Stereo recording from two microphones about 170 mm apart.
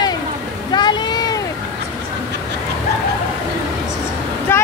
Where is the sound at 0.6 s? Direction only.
25° left (ahead or behind).